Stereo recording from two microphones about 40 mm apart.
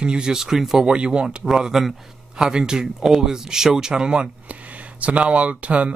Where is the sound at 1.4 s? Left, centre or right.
Centre.